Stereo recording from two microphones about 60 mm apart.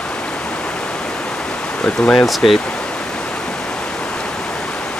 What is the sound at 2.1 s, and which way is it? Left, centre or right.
Speech, centre.